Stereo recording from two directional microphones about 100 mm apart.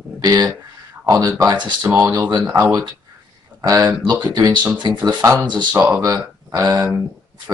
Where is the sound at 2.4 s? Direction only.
25° right (ahead or behind); by 5.8 s 45° right (ahead or behind).